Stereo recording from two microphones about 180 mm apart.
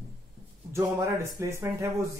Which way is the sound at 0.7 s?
15° right (ahead or behind).